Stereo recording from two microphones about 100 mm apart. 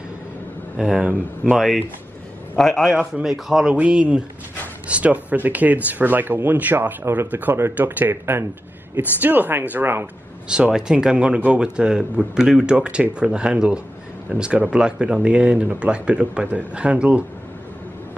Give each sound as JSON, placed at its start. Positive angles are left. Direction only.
{"t": 0.7, "sound": "speech", "side_deg": -10}
{"t": 10.5, "sound": "speech", "side_deg": -5}